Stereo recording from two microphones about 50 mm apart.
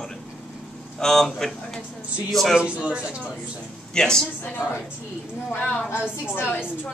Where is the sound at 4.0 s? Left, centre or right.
Centre.